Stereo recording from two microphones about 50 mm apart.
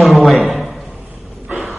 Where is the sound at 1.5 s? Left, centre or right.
Right.